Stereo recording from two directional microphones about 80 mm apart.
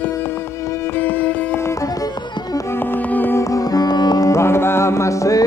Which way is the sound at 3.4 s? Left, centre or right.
Left.